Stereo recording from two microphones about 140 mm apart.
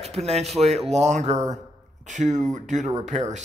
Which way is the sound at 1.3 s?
25° right (ahead or behind).